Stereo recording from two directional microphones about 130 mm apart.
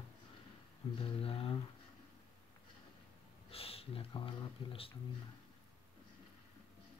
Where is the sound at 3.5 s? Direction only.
50° left (ahead or behind).